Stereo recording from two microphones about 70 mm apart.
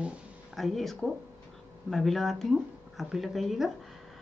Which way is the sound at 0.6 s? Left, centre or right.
Centre.